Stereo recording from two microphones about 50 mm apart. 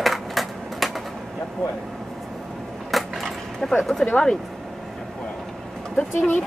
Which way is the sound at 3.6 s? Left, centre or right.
Centre.